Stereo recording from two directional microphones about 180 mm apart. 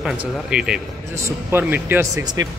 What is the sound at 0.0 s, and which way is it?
A man's voice, 5° right (ahead or behind).